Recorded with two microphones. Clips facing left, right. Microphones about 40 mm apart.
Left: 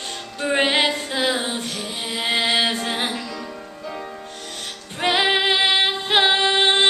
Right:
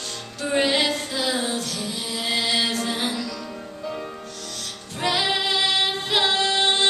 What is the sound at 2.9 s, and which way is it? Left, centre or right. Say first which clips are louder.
Music: left 2 dB; left.